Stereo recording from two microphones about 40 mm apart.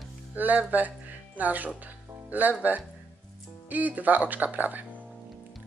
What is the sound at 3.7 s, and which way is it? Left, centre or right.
Speech, right.